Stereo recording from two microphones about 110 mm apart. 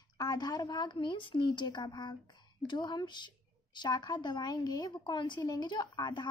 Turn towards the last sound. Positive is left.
turn(degrees=40)  # may be behind; listen again after turning